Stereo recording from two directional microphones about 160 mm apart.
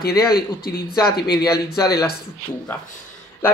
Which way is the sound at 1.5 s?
5° right (ahead or behind).